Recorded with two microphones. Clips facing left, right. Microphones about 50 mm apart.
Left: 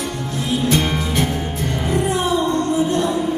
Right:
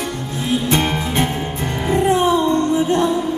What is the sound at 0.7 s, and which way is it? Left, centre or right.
Music, right.